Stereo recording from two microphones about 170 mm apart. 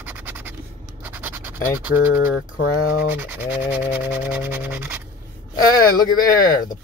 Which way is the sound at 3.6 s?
10° right (ahead or behind).